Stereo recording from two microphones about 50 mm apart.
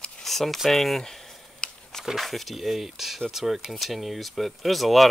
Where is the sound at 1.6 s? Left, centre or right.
Left.